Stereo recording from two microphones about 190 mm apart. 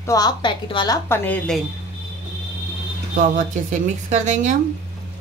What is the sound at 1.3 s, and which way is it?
Speech, centre (ahead or behind).